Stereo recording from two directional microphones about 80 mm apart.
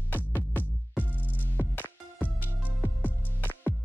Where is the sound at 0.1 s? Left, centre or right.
Left.